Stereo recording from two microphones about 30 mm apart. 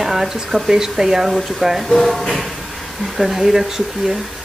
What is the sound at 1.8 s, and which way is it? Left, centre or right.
Speech, centre.